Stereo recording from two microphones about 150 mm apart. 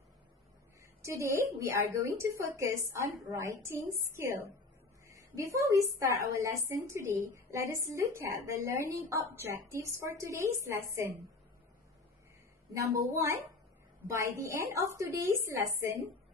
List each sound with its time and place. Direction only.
1.6 s a woman's voice: 20° right (ahead or behind)
12.7 s a woman's voice: 20° right (ahead or behind)